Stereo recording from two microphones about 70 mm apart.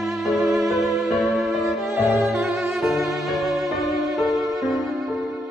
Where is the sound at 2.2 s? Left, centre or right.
Centre.